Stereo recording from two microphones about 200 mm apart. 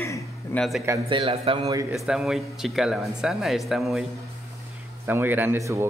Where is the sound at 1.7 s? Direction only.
15° right (ahead or behind).